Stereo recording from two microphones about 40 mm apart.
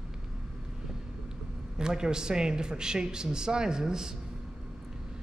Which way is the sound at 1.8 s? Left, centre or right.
Centre.